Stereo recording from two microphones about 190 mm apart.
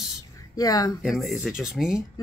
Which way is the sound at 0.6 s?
20° left (ahead or behind).